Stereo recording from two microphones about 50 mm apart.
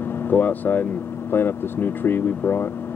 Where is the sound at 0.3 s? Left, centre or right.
Left.